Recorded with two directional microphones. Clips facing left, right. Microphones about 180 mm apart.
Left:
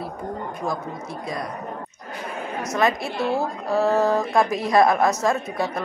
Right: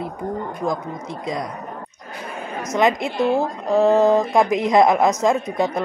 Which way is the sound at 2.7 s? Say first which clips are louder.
Right 4 dB; 20° right (ahead or behind).